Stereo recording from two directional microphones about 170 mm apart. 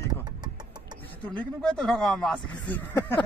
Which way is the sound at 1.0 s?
10° left (ahead or behind).